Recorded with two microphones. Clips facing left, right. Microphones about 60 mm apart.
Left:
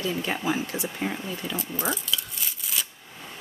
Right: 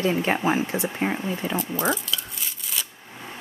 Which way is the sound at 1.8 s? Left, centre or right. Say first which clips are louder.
Right 3 dB; centre.